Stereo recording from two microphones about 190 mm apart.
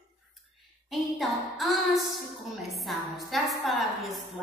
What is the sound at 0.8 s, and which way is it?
A woman's voice, centre (ahead or behind).